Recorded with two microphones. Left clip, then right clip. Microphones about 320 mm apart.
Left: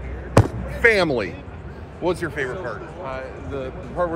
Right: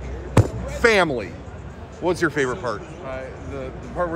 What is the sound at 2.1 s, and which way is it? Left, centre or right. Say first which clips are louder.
Speech: right 4 dB; right.